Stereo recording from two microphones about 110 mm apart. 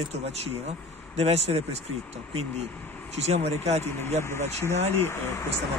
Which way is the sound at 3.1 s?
80° right.